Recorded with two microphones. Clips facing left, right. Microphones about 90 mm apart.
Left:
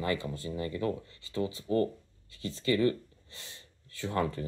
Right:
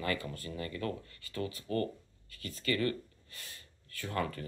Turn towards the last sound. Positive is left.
turn(degrees=20)  # may be behind; listen again after turning